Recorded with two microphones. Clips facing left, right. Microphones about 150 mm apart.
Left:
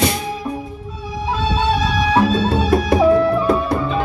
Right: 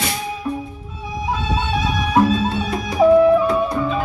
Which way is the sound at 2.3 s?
75° left (ahead or behind).